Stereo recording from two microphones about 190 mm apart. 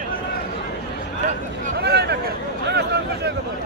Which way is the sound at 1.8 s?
60° right (ahead or behind).